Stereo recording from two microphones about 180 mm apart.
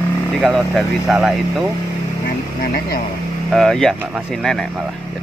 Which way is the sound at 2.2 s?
55° left (ahead or behind).